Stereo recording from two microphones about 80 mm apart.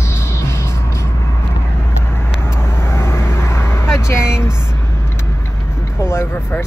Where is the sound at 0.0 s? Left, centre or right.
Left.